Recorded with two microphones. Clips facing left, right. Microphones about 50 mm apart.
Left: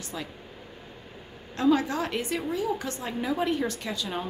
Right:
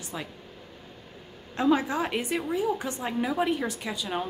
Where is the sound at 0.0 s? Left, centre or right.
Centre.